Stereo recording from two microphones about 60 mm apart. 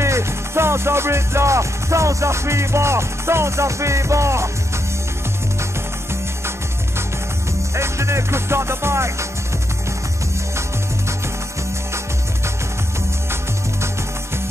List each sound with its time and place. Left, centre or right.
0.0 s music: right
7.7 s music: right